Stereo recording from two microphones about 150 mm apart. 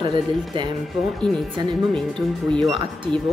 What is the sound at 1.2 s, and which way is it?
Speech, 5° left (ahead or behind).